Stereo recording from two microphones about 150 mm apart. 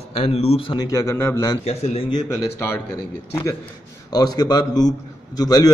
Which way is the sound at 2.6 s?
20° left (ahead or behind).